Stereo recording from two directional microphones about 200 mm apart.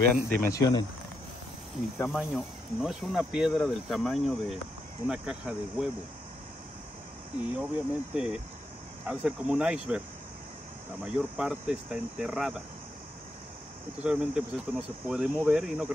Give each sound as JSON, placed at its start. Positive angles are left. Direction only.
{"t": 0.1, "sound": "speech", "side_deg": 10}
{"t": 2.0, "sound": "speech", "side_deg": 0}
{"t": 7.5, "sound": "speech", "side_deg": -5}
{"t": 11.1, "sound": "speech", "side_deg": -5}
{"t": 14.0, "sound": "speech", "side_deg": -5}